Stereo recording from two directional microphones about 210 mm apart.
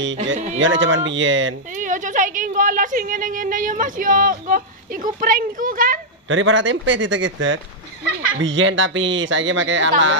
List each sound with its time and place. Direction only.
0.6 s speech: 65° right (ahead or behind)
1.8 s a woman's voice: 40° right (ahead or behind)
6.2 s speech: 65° right (ahead or behind)